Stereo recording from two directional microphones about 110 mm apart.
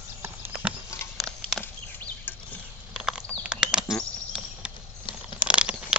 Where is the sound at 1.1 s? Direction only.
Centre (ahead or behind).